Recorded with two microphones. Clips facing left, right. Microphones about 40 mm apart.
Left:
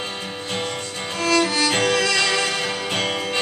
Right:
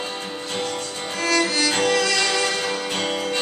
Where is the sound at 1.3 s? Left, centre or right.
Left.